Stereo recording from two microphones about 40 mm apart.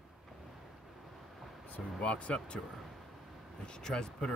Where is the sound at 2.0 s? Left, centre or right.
Left.